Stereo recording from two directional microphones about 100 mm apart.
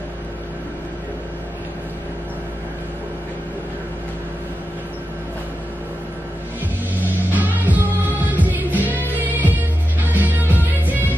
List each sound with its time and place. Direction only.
7.0 s music: 15° right (ahead or behind)